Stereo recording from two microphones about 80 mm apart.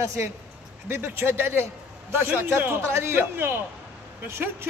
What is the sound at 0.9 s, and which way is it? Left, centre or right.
A man's voice, right.